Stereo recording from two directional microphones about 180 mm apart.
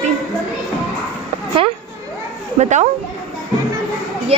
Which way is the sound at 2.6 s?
40° right (ahead or behind).